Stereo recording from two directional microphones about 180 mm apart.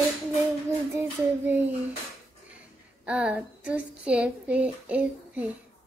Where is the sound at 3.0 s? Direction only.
5° right (ahead or behind).